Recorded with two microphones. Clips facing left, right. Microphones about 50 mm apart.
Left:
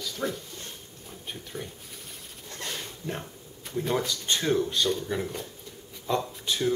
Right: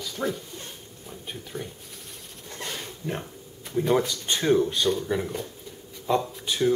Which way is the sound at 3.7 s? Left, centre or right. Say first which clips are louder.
Right 5 dB; centre.